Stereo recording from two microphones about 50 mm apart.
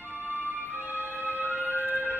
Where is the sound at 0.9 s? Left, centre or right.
Right.